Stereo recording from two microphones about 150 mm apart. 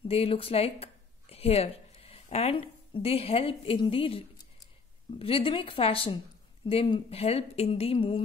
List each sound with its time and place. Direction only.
0.1 s a woman's voice: 40° left (ahead or behind)
5.2 s speech: 40° left (ahead or behind)